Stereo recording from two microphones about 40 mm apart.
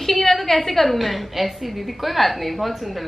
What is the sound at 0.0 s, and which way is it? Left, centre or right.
A woman's voice, centre.